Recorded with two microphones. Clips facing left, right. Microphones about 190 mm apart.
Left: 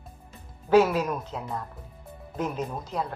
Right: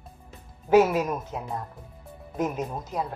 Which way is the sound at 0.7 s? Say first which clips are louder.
Right 1 dB; 20° right (ahead or behind).